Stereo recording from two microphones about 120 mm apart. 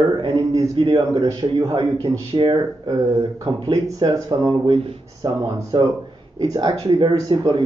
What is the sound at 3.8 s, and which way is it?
Speech, 30° right (ahead or behind).